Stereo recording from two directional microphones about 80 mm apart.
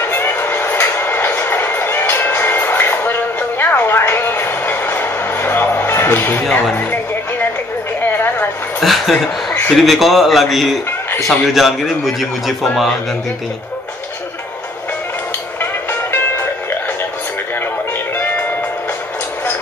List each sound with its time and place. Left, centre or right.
0.0 s train: left
8.0 s a sound: left
8.8 s a man's voice: centre
15.6 s music: left
18.1 s music: left